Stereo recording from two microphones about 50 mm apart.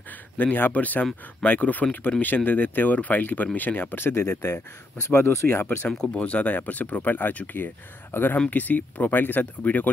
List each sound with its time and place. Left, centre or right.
0.1 s speech: left
6.1 s speech: left
8.5 s speech: left